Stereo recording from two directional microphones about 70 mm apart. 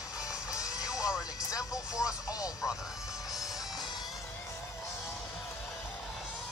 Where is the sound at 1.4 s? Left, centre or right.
Left.